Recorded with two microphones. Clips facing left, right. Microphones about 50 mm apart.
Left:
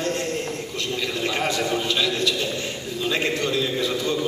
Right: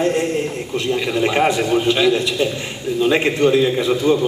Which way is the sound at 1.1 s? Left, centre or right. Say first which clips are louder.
Right 8 dB; right.